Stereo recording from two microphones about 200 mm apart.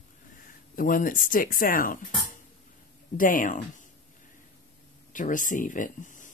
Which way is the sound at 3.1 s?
45° left (ahead or behind).